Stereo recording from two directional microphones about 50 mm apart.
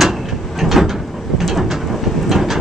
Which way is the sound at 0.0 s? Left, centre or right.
Centre.